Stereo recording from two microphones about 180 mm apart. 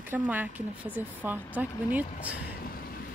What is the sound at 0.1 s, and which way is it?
Speech, 10° right (ahead or behind).